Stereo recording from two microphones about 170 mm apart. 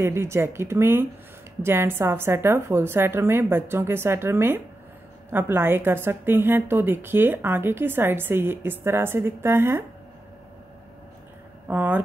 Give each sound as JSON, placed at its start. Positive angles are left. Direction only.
{"t": 0.0, "sound": "a woman's voice", "side_deg": -15}
{"t": 11.6, "sound": "speech", "side_deg": -10}